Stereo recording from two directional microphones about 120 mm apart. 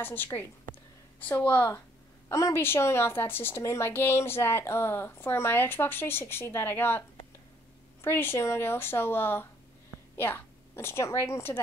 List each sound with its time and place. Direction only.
0.0 s a woman's voice: 15° left (ahead or behind)
2.2 s a woman's voice: 25° left (ahead or behind)